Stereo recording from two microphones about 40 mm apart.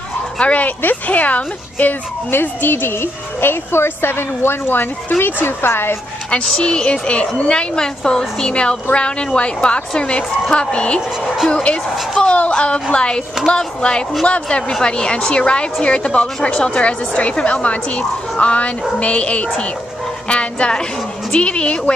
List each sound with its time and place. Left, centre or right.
0.4 s speech: left
2.3 s a woman's voice: left
4.7 s a woman's voice: left
6.3 s a woman's voice: left
14.7 s a woman's voice: centre